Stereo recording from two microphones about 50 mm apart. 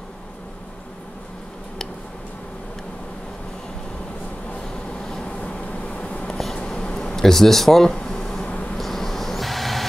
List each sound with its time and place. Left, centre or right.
4.9 s vehicle: centre
5.3 s a sound: left
8.5 s vehicle: left
8.7 s vehicle: centre